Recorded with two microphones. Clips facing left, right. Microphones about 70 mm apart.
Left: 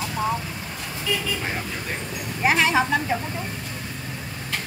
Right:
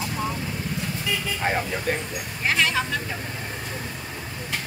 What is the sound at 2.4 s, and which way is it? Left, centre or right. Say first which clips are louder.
Speech: left 4 dB; left.